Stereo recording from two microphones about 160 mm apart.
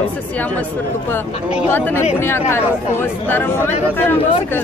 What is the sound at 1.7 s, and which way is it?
Speech, 15° left (ahead or behind).